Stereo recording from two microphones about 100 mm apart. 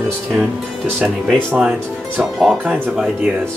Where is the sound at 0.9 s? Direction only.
Centre (ahead or behind).